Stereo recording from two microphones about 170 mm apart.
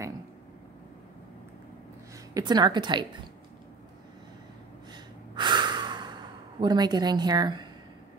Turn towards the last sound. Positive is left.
turn(degrees=-25)  # may be behind; listen again after turning